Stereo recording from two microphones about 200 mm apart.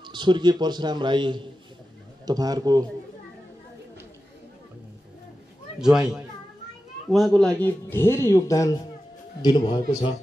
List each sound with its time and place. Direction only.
0.0 s a man's voice: 25° right (ahead or behind)
5.8 s speech: 5° right (ahead or behind)
7.1 s a man's voice: centre (ahead or behind); by 10.1 s 25° left (ahead or behind)